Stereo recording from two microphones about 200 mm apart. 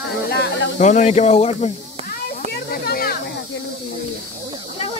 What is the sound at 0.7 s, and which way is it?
Speech, 35° left (ahead or behind).